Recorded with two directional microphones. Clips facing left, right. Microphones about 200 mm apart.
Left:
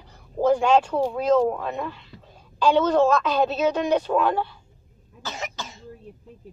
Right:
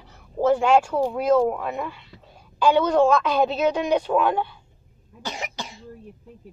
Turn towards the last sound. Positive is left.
turn(degrees=-35)  # may be behind; listen again after turning